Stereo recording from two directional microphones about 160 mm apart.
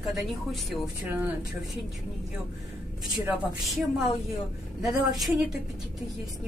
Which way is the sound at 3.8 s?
Centre (ahead or behind).